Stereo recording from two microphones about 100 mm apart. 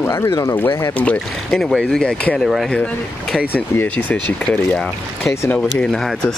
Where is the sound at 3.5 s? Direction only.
15° left (ahead or behind).